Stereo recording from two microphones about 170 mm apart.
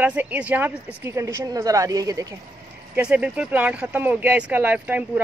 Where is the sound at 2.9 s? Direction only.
5° right (ahead or behind).